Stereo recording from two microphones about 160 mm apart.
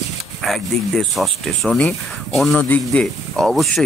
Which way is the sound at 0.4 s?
Centre (ahead or behind).